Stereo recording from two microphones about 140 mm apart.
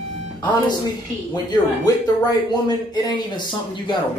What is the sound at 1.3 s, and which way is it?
Speech, 30° left (ahead or behind).